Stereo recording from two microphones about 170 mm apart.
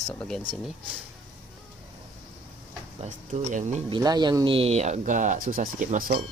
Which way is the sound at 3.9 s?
25° right (ahead or behind).